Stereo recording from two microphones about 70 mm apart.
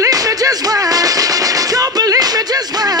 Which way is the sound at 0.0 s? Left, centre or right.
Right.